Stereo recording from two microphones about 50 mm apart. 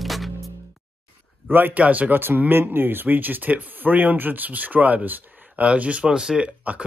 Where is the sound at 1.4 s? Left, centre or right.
Right.